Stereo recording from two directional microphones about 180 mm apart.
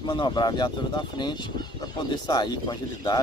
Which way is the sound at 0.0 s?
25° left (ahead or behind).